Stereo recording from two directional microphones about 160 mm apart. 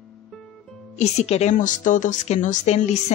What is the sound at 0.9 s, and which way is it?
A woman's voice, 45° left (ahead or behind).